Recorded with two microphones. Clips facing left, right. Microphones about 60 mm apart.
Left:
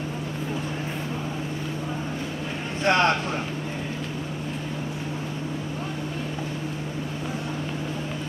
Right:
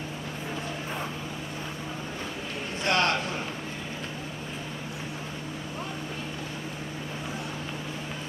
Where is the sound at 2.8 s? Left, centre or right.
Left.